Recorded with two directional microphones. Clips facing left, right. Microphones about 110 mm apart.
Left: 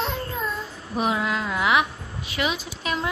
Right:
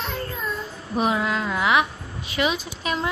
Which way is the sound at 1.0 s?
5° left (ahead or behind).